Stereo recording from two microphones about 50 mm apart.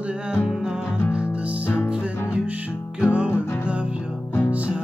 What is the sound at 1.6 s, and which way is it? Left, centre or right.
Music, left.